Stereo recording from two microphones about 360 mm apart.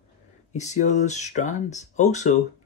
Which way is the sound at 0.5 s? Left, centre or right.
Centre.